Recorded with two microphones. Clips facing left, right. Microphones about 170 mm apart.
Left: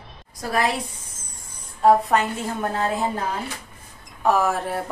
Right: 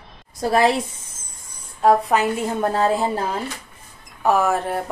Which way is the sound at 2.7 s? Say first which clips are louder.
Right 4 dB; 30° right (ahead or behind).